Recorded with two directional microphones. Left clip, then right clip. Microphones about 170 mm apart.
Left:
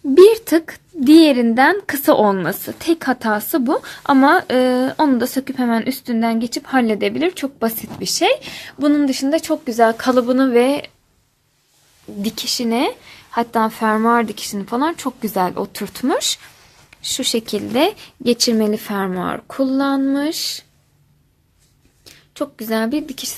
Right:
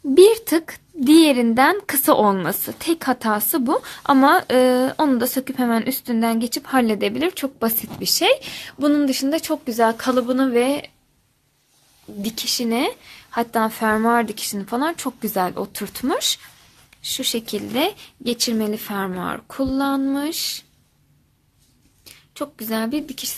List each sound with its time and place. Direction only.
0.1 s speech: centre (ahead or behind)
12.2 s speech: 15° left (ahead or behind)
22.0 s speech: 15° left (ahead or behind)